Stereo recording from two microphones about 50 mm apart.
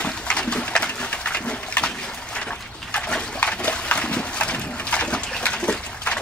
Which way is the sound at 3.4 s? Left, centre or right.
Left.